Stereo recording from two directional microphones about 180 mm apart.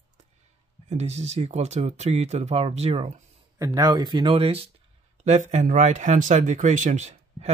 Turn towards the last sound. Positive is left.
turn(degrees=-35)  # may be behind; listen again after turning